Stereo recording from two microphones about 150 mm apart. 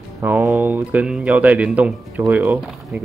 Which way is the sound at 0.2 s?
15° right (ahead or behind).